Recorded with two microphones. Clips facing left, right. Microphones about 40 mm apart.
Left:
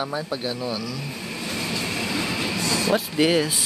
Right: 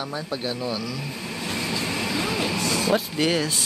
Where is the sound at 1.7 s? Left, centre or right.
Centre.